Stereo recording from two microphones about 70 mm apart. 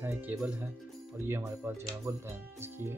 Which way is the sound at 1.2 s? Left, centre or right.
Right.